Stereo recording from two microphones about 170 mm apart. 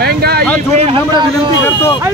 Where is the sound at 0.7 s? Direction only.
35° right (ahead or behind).